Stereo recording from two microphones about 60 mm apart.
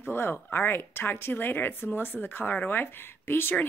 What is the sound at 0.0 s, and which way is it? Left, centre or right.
Speech, left.